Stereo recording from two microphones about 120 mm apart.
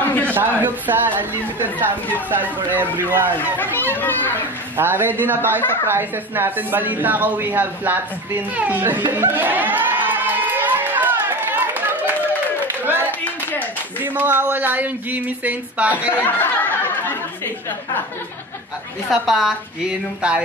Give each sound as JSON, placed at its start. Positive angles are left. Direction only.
{"t": 0.0, "sound": "a sound", "side_deg": 15}
{"t": 0.3, "sound": "speech", "side_deg": -15}
{"t": 3.9, "sound": "a child's voice", "side_deg": 15}
{"t": 4.7, "sound": "speech", "side_deg": -15}
{"t": 9.1, "sound": "crowd", "side_deg": -15}
{"t": 13.2, "sound": "clapping", "side_deg": 15}
{"t": 13.9, "sound": "speech", "side_deg": -15}
{"t": 16.1, "sound": "a sound", "side_deg": 15}
{"t": 19.0, "sound": "a woman's voice", "side_deg": 0}